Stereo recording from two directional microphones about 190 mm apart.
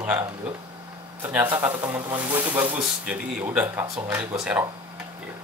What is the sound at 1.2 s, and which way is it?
Speech, 10° right (ahead or behind).